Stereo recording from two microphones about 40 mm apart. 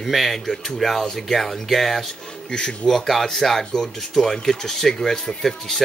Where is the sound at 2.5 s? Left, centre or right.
Left.